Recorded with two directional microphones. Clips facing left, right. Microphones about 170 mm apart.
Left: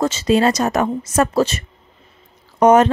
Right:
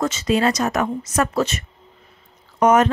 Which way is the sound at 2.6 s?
30° left (ahead or behind).